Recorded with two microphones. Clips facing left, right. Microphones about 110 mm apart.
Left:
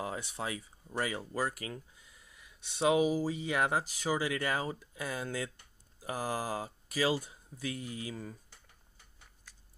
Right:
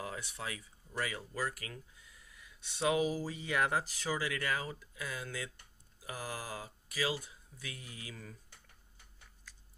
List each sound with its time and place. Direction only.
0.0 s speech: 25° left (ahead or behind)